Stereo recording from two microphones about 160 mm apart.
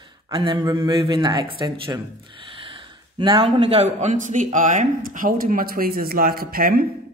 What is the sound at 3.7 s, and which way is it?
Speech, 45° right (ahead or behind).